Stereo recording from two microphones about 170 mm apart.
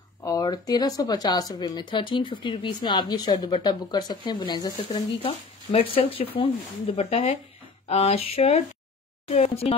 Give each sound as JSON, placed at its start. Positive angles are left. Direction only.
{"t": 0.2, "sound": "speech", "side_deg": 20}